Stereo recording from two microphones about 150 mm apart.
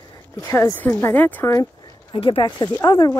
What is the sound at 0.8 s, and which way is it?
Speech, 15° left (ahead or behind).